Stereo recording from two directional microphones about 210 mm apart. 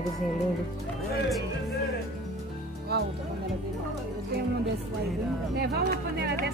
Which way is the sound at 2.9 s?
50° right (ahead or behind).